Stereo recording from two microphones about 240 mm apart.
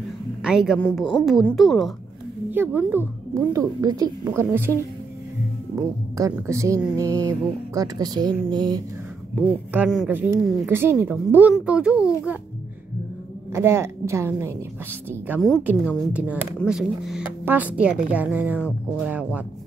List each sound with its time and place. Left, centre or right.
0.4 s a woman's voice: centre
5.8 s a woman's voice: centre
9.7 s a woman's voice: centre
13.5 s a woman's voice: centre